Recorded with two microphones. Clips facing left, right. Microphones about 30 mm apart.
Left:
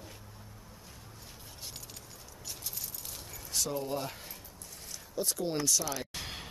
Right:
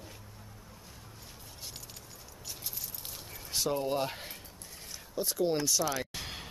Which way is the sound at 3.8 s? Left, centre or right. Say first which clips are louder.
Right 4 dB; right.